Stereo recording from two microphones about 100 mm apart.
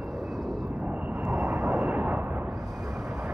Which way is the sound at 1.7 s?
15° right (ahead or behind).